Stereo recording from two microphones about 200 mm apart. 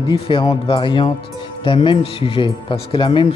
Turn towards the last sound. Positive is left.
turn(degrees=25)  # may be behind; listen again after turning